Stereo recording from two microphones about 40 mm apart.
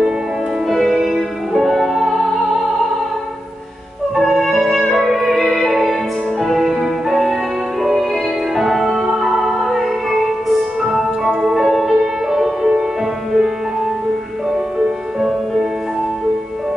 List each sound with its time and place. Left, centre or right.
0.7 s music: centre
4.3 s music: centre
8.5 s music: centre